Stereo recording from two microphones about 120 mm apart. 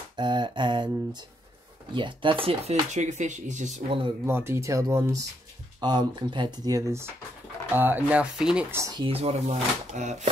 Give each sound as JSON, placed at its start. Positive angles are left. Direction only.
{"t": 0.1, "sound": "speech", "side_deg": -40}
{"t": 2.0, "sound": "chopping", "side_deg": -45}
{"t": 2.9, "sound": "speech", "side_deg": -80}
{"t": 4.3, "sound": "speech", "side_deg": -20}
{"t": 5.8, "sound": "speech", "side_deg": -40}
{"t": 7.7, "sound": "speech", "side_deg": -15}
{"t": 8.6, "sound": "speech", "side_deg": -20}
{"t": 8.9, "sound": "speech", "side_deg": -50}